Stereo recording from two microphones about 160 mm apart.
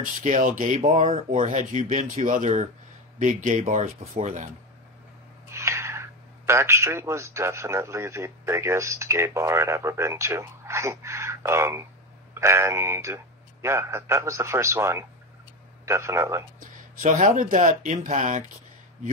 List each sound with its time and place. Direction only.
0.2 s speech: 50° right (ahead or behind)
5.5 s a man's voice: 15° right (ahead or behind)
16.5 s speech: 55° right (ahead or behind)